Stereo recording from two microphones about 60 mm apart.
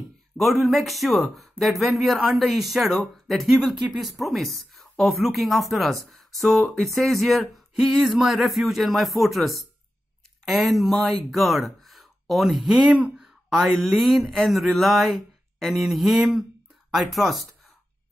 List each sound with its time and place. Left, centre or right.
0.4 s a woman's voice: centre